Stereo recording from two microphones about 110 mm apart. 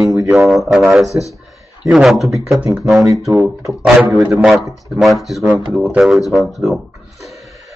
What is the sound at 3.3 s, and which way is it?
Speech, 30° right (ahead or behind).